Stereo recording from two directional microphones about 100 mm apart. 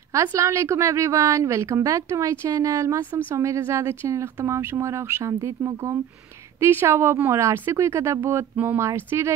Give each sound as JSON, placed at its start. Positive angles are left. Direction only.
{"t": 0.1, "sound": "a woman's voice", "side_deg": -30}